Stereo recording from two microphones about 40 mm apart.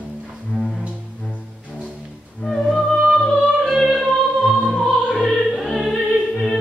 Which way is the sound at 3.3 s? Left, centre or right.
Centre.